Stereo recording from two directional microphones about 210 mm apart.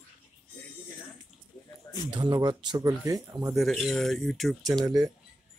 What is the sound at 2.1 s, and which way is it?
Speech, 20° right (ahead or behind).